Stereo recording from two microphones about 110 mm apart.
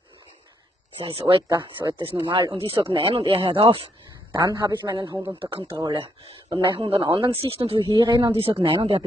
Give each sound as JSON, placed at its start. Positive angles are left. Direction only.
{"t": 0.9, "sound": "speech", "side_deg": -50}
{"t": 1.5, "sound": "speech", "side_deg": -40}
{"t": 4.4, "sound": "a man's voice", "side_deg": -40}
{"t": 5.9, "sound": "speech", "side_deg": -55}
{"t": 6.5, "sound": "speech", "side_deg": -40}
{"t": 7.8, "sound": "speech", "side_deg": -40}